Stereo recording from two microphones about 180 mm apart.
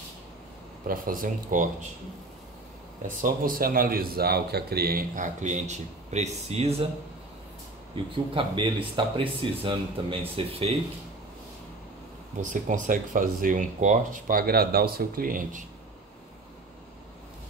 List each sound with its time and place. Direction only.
0.8 s speech: 50° right (ahead or behind)
3.1 s speech: 50° right (ahead or behind)
7.9 s speech: 25° right (ahead or behind)
12.4 s speech: 45° right (ahead or behind)